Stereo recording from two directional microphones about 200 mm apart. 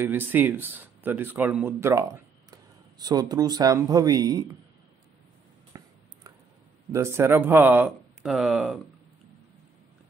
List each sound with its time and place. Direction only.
0.0 s a man's voice: 10° right (ahead or behind)
5.7 s a sound: 15° right (ahead or behind)
6.9 s speech: 15° right (ahead or behind)